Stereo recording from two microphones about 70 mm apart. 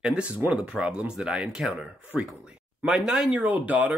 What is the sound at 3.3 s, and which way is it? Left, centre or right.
Speech, right.